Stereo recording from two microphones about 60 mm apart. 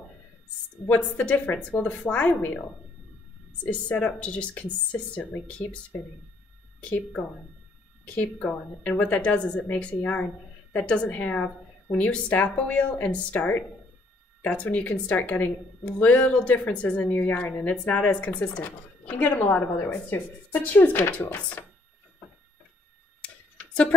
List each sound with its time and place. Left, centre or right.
0.8 s speech: left
3.7 s a woman's voice: left
23.2 s tick: centre